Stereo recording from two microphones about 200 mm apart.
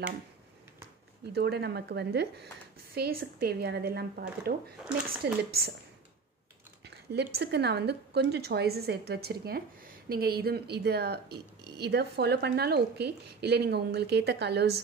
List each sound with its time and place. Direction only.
1.3 s a woman's voice: 55° right (ahead or behind)
6.8 s a sound: 55° right (ahead or behind)
7.3 s a woman's voice: 55° right (ahead or behind)